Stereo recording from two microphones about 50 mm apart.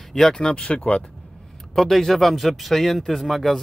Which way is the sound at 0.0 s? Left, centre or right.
Centre.